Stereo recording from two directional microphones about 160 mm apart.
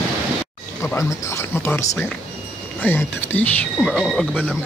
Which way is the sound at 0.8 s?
15° left (ahead or behind).